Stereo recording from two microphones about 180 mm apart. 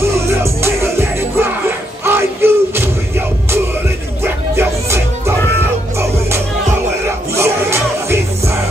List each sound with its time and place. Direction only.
0.1 s music: 15° right (ahead or behind)
4.2 s music: 15° right (ahead or behind)
7.3 s music: 15° right (ahead or behind)